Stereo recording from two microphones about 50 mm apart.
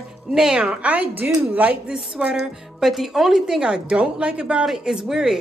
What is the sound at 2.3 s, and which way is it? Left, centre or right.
A woman's voice, centre.